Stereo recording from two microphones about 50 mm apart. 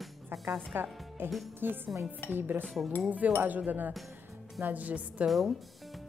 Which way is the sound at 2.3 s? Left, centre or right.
Right.